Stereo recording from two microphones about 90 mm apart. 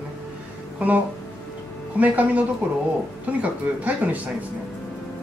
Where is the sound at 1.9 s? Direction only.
15° right (ahead or behind).